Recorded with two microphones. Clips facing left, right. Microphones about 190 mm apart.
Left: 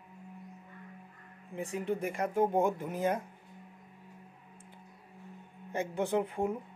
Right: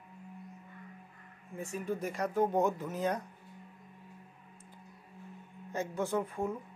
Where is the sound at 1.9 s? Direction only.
55° left (ahead or behind).